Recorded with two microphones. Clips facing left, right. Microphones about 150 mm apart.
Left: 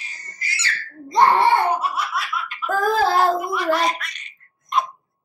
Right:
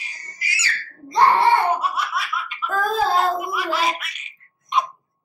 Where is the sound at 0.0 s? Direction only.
10° right (ahead or behind).